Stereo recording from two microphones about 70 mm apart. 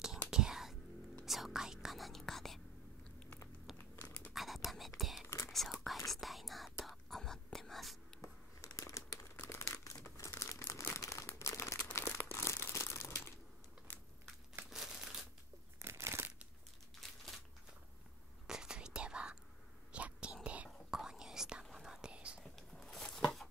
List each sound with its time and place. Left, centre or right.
0.3 s whispering: centre
3.7 s crumpling: left
4.3 s whispering: centre
8.5 s crumpling: left
13.9 s a sound: left
14.7 s crumpling: centre
15.8 s crumpling: right
17.0 s crumpling: centre
18.5 s whispering: centre
22.4 s a sound: centre